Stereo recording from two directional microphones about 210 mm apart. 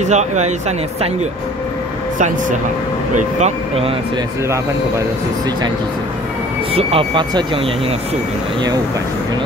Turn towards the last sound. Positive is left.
turn(degrees=-25)  # may be behind; listen again after turning